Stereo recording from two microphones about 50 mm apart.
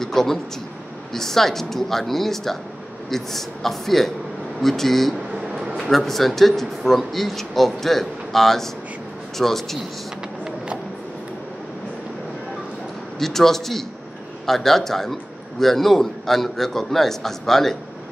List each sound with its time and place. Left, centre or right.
0.0 s a man's voice: centre
5.3 s a sound: centre
5.8 s speech: centre
13.2 s a man's voice: centre